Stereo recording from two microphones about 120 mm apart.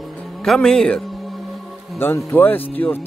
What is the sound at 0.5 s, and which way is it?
Speech, 5° left (ahead or behind).